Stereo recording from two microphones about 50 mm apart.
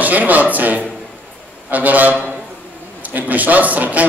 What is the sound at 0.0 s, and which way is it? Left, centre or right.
A man's voice, right.